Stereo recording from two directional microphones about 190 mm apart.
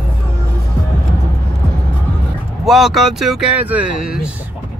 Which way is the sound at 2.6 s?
Centre (ahead or behind).